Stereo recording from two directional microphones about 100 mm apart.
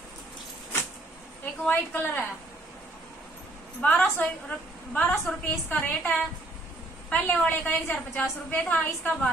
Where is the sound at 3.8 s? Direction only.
10° left (ahead or behind).